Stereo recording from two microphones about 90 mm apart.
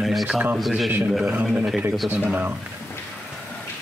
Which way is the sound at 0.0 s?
Centre (ahead or behind).